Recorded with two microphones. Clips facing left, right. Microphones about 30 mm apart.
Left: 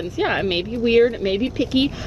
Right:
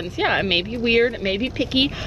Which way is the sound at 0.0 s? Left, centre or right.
Right.